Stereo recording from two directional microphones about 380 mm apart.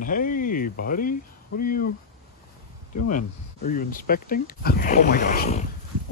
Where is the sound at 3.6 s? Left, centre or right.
Left.